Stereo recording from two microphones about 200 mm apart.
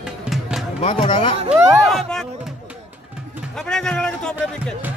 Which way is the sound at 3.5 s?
5° left (ahead or behind).